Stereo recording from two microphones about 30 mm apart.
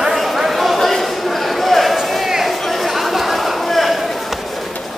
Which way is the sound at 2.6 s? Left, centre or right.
Centre.